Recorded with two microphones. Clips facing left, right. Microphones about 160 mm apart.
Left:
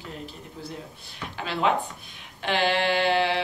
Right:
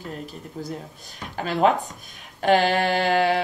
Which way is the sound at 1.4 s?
45° right (ahead or behind).